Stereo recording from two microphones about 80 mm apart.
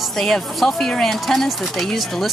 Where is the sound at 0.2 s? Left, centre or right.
Centre.